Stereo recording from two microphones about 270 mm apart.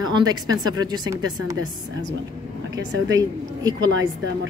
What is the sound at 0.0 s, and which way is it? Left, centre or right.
Speech, centre.